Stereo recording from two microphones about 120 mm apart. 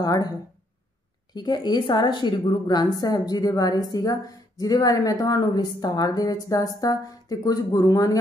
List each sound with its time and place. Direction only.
0.0 s a woman's voice: 35° left (ahead or behind)
1.3 s a woman's voice: 40° left (ahead or behind)